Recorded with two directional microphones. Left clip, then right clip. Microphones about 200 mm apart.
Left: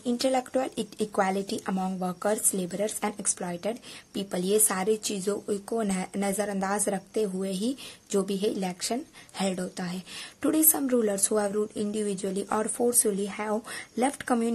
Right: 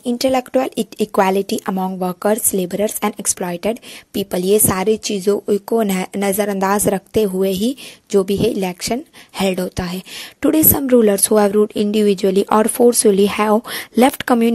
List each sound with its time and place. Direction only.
0.0 s speech: 35° right (ahead or behind)